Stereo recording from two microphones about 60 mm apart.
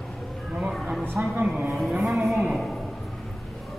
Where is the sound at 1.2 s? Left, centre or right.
Centre.